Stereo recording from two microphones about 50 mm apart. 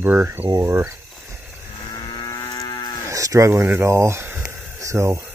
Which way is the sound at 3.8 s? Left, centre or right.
Right.